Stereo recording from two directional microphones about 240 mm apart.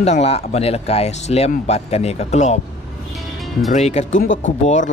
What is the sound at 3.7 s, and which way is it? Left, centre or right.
Speech, left.